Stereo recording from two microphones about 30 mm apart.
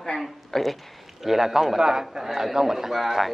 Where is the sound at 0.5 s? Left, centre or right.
Centre.